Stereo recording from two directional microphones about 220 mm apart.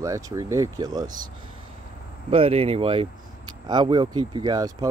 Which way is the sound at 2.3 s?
25° right (ahead or behind).